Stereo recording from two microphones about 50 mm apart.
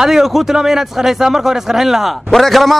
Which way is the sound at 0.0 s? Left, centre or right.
Centre.